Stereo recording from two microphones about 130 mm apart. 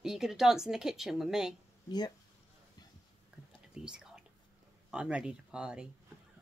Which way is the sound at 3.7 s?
5° right (ahead or behind).